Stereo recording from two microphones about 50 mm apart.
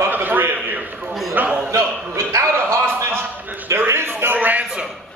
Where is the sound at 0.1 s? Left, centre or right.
Right.